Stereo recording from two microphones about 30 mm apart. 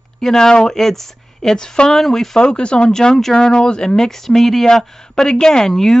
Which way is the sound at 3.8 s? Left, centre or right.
Centre.